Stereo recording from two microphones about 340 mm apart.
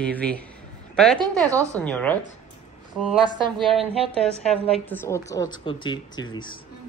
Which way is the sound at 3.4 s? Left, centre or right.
Centre.